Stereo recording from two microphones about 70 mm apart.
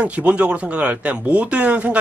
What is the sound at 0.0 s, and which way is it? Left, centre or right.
Speech, centre.